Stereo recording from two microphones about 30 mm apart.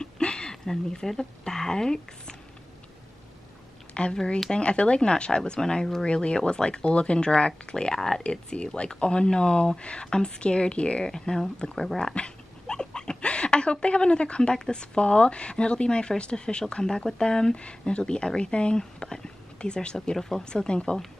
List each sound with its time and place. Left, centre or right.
0.0 s a sound: left
0.5 s speech: centre
4.0 s a woman's voice: left
5.6 s speech: centre
6.0 s a woman's voice: left
7.2 s speech: left
8.2 s a woman's voice: left
11.1 s speech: left
12.0 s dog: left
13.2 s a woman's voice: left
17.6 s a woman's voice: left
18.8 s speech: centre
20.2 s speech: centre
20.4 s speech: left